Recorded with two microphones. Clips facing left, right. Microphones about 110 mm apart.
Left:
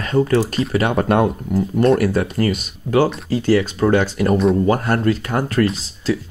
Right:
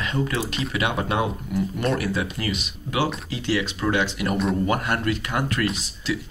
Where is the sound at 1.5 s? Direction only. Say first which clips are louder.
Left 9 dB; 40° left (ahead or behind).